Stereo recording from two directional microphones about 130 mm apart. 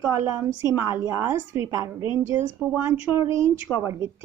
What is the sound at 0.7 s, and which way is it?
Speech, 20° right (ahead or behind).